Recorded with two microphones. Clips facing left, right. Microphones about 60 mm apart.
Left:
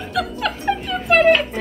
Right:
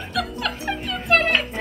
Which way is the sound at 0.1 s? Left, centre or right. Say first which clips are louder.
Left 3 dB; centre.